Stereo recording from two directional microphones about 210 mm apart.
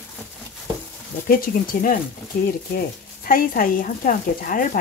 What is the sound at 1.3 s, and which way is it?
Speech, 45° left (ahead or behind).